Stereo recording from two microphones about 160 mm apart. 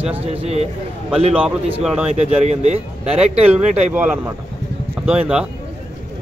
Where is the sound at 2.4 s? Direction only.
45° right (ahead or behind).